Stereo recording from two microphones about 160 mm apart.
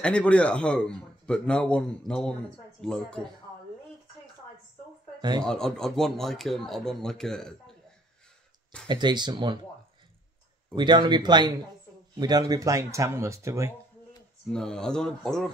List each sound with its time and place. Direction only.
0.0 s speech: 5° left (ahead or behind)
5.4 s speech: 5° left (ahead or behind)
8.8 s speech: 30° right (ahead or behind)
10.7 s speech: 30° right (ahead or behind)
14.5 s speech: 5° left (ahead or behind)